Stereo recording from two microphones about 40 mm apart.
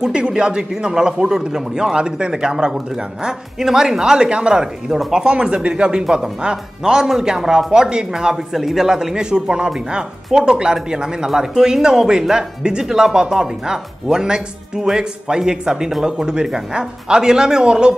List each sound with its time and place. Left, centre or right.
0.0 s speech: centre